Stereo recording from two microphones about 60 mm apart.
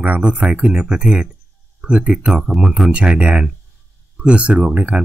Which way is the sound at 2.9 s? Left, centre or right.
Centre.